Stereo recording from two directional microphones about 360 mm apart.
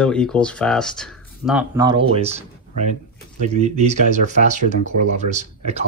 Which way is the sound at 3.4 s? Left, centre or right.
Centre.